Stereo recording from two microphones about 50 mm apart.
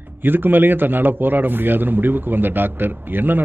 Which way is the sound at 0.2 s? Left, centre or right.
Right.